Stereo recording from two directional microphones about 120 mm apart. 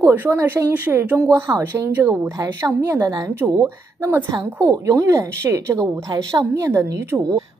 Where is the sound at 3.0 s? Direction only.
35° right (ahead or behind).